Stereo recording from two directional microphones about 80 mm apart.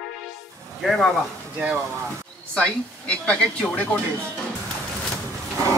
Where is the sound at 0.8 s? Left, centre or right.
Centre.